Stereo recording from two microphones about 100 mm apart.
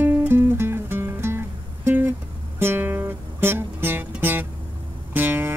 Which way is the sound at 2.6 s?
20° right (ahead or behind).